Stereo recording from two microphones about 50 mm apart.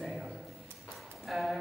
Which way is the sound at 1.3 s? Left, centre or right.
Centre.